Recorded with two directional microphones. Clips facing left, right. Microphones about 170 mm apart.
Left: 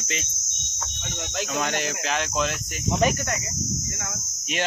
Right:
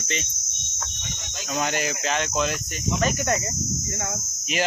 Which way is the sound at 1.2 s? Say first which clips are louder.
Left 14 dB; 70° left (ahead or behind).